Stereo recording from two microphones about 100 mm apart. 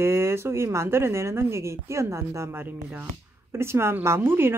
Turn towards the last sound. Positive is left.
turn(degrees=-25)  # may be behind; listen again after turning